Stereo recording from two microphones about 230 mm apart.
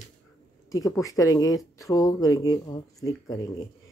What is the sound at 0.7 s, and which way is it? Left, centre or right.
Speech, centre.